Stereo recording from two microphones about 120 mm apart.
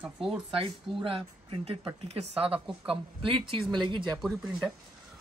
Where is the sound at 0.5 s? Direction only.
50° right (ahead or behind).